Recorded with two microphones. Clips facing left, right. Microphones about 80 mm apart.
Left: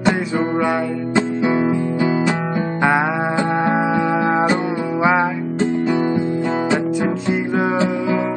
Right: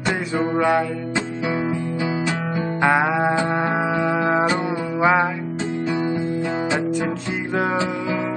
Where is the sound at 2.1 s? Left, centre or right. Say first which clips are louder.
Left 5 dB; left.